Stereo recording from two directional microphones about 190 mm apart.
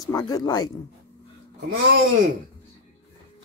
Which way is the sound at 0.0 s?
20° left (ahead or behind).